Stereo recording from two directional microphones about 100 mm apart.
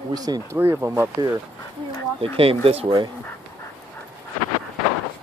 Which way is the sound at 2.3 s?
70° right (ahead or behind).